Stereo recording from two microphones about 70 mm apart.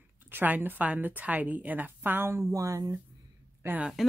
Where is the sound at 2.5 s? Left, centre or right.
Right.